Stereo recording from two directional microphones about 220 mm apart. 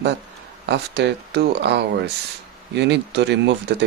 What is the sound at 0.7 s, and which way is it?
A man's voice, 50° right (ahead or behind).